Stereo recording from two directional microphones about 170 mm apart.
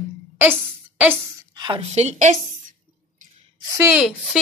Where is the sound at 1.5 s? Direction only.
25° right (ahead or behind).